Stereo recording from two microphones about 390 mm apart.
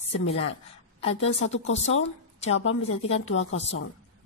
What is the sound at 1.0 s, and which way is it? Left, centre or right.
Speech, centre.